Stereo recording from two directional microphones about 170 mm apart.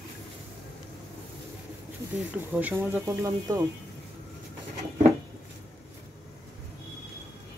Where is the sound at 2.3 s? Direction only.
10° right (ahead or behind).